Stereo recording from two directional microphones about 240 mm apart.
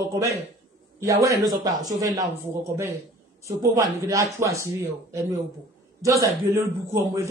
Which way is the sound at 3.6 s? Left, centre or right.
Centre.